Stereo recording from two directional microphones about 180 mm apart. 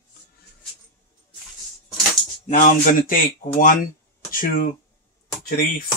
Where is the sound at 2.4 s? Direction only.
50° left (ahead or behind).